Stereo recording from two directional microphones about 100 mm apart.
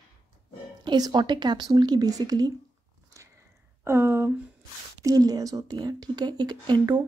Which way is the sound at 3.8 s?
25° right (ahead or behind).